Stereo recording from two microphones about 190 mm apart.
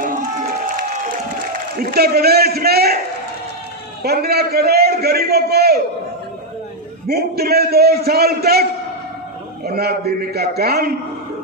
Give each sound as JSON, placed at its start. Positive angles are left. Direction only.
{"t": 1.8, "sound": "a man's voice", "side_deg": -55}
{"t": 4.0, "sound": "a man's voice", "side_deg": -55}
{"t": 7.1, "sound": "a man's voice", "side_deg": -55}
{"t": 9.7, "sound": "a man's voice", "side_deg": -55}